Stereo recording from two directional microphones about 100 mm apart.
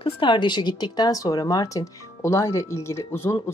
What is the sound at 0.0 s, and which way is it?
Speech, 55° left (ahead or behind).